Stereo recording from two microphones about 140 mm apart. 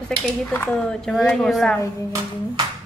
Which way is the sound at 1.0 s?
Centre (ahead or behind).